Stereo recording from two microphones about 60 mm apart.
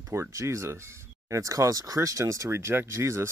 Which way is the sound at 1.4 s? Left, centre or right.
Right.